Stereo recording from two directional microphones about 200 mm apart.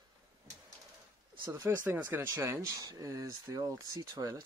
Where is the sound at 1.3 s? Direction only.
20° right (ahead or behind).